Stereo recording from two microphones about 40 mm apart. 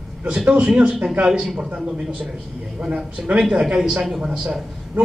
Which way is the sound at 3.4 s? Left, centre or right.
Centre.